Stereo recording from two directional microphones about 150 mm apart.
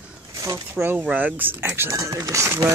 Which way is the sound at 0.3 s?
20° right (ahead or behind).